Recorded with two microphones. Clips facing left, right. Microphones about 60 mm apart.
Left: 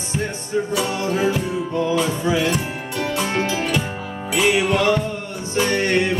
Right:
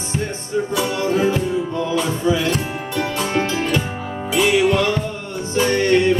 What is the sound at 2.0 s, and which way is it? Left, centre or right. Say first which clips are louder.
Music: right 1 dB; left.